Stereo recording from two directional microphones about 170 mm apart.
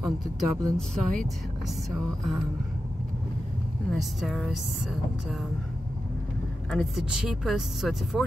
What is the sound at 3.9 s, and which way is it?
Speech, centre (ahead or behind).